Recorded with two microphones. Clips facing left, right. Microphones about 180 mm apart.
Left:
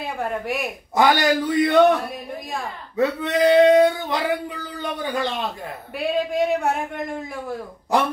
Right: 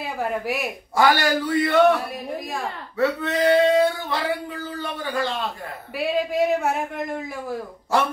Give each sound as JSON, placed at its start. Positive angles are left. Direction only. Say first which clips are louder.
{"t": 0.0, "sound": "a man's voice", "louder": "even", "side_deg": 0}
{"t": 0.9, "sound": "a man's voice", "louder": "left 1 dB", "side_deg": 20}
{"t": 3.0, "sound": "speech", "louder": "left 2 dB", "side_deg": 20}
{"t": 5.9, "sound": "a man's voice", "louder": "even", "side_deg": 0}
{"t": 7.9, "sound": "speech", "louder": "left 1 dB", "side_deg": 15}